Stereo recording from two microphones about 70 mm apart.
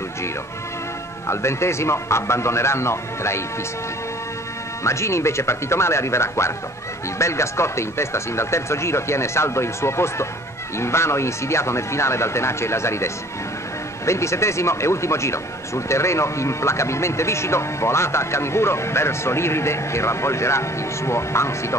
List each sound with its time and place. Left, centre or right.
1.2 s speech: left
4.8 s speech: left